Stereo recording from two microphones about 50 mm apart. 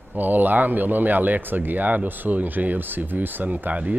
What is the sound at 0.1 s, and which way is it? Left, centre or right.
Speech, right.